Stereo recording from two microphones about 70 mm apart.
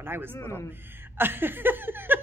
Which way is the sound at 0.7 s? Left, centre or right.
Right.